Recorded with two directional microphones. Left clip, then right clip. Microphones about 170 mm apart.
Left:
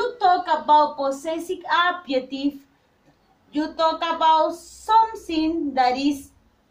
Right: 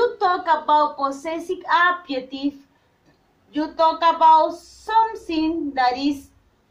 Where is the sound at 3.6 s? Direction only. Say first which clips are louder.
Right 4 dB; 30° left (ahead or behind).